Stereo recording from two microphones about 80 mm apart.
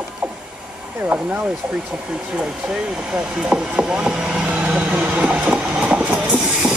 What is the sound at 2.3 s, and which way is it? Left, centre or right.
Wood, centre.